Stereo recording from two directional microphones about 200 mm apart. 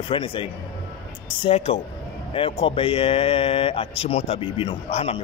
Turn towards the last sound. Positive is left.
turn(degrees=30)  # may be behind; listen again after turning